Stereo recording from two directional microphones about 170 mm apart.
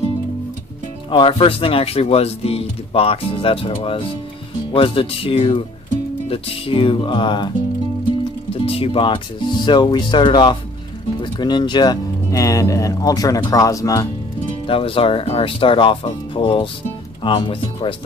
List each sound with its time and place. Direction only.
1.1 s speech: 30° left (ahead or behind)
8.6 s speech: 35° left (ahead or behind)
14.7 s speech: 35° left (ahead or behind)